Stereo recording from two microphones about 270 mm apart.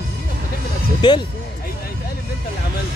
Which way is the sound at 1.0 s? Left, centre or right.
Centre.